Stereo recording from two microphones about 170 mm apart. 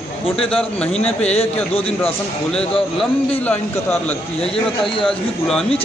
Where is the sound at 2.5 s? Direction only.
5° left (ahead or behind).